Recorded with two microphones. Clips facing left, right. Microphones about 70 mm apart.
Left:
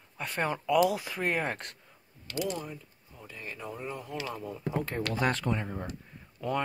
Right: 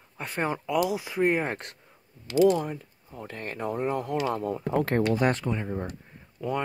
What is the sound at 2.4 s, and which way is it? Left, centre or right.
Speech, right.